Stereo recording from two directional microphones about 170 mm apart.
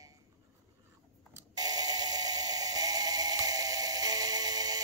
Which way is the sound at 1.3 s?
25° right (ahead or behind).